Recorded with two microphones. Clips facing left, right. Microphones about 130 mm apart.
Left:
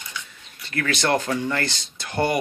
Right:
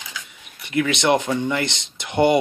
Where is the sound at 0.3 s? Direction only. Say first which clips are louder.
Right 6 dB; 15° right (ahead or behind).